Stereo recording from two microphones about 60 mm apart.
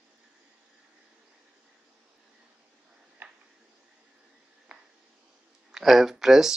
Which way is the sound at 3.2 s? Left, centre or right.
Right.